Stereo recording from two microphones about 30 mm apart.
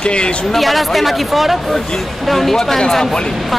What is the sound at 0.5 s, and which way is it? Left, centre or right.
A woman's voice, centre.